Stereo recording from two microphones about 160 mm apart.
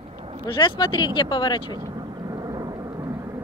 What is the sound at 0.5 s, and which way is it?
Speech, 30° left (ahead or behind).